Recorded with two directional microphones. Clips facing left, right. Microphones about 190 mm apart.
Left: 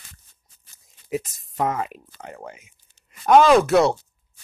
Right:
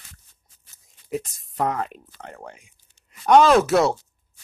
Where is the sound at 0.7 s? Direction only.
Centre (ahead or behind).